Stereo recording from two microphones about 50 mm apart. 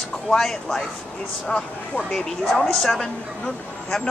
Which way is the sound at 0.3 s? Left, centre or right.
Centre.